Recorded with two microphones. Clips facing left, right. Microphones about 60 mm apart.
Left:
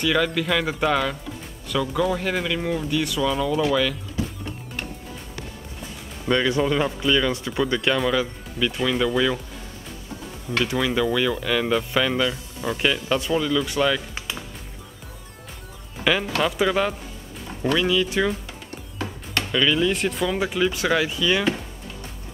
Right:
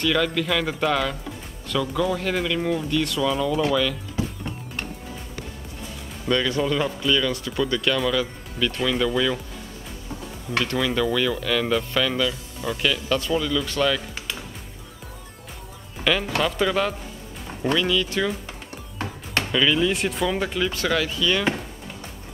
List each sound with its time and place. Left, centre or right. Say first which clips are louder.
0.0 s speech: left 1 dB; centre
6.2 s speech: left 2 dB; centre
10.6 s speech: left 1 dB; centre
16.0 s speech: left 1 dB; centre
19.0 s music: even; right
19.5 s speech: even; centre